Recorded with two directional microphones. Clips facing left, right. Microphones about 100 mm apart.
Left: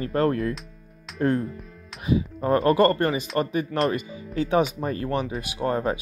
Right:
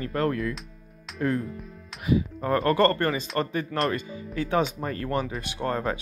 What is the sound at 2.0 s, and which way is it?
Speech, 20° left (ahead or behind).